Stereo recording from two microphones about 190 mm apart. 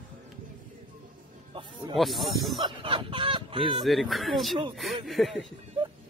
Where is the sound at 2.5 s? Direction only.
25° right (ahead or behind).